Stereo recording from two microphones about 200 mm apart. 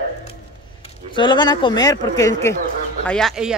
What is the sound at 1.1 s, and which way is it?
Speech, 20° left (ahead or behind).